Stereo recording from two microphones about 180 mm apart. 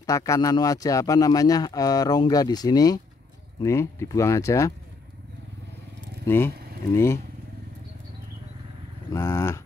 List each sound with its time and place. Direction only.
0.0 s a man's voice: 20° left (ahead or behind)
6.2 s speech: 15° left (ahead or behind)
9.1 s speech: 15° left (ahead or behind)